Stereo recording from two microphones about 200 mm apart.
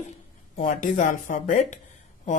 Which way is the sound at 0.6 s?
40° left (ahead or behind).